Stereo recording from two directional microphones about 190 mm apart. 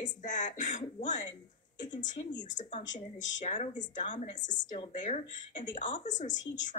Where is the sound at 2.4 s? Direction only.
40° left (ahead or behind).